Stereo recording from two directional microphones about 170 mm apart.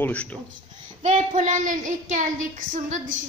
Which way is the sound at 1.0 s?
45° right (ahead or behind).